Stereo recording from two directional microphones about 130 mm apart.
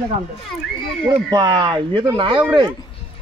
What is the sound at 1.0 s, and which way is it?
Speech, 35° right (ahead or behind).